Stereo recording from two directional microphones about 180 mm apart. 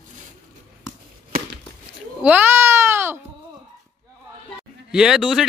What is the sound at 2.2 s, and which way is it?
Music, 10° right (ahead or behind).